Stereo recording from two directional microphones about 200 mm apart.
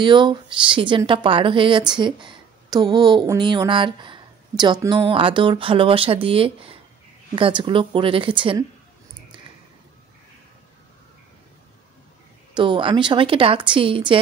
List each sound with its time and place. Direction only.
0.0 s speech: 25° right (ahead or behind)
12.5 s speech: 25° right (ahead or behind)